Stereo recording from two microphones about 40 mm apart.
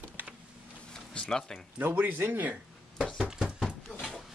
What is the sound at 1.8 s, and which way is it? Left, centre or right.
Speech, right.